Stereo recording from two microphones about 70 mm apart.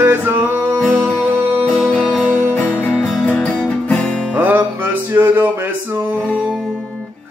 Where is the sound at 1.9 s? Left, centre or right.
Centre.